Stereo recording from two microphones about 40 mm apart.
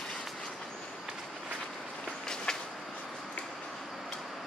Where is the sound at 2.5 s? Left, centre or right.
Centre.